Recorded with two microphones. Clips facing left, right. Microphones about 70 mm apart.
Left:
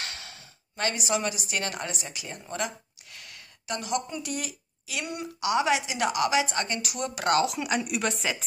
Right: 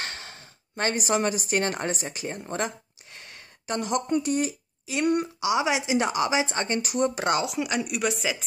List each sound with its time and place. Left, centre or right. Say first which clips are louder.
0.0 s speech: right 3 dB; right
5.0 s a woman's voice: right 14 dB; right
5.4 s speech: even; centre; by 7.2 s right
7.4 s speech: even; centre